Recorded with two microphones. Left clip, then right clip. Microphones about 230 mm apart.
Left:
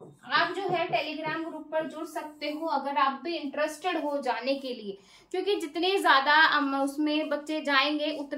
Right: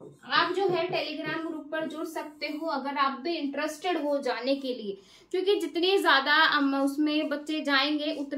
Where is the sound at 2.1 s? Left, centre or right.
Centre.